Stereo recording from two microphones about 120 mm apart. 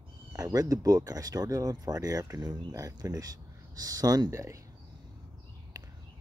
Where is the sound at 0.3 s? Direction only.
30° right (ahead or behind).